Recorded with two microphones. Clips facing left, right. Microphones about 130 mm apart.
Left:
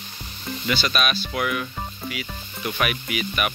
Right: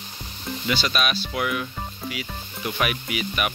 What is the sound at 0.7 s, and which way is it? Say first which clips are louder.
Speech: left 1 dB; 20° right (ahead or behind).